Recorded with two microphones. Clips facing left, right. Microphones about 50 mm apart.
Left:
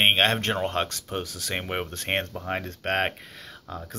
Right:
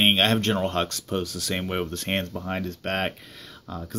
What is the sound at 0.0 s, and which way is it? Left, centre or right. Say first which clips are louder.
Speech: even; left.